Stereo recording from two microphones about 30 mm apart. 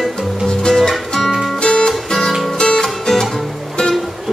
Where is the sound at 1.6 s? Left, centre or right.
Left.